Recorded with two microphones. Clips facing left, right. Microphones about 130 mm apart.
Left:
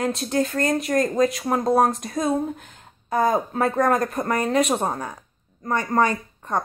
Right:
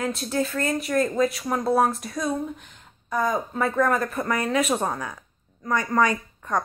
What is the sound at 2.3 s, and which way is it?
Speech, 40° left (ahead or behind).